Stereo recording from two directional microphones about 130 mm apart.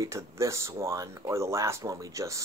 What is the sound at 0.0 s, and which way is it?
Speech, 20° right (ahead or behind).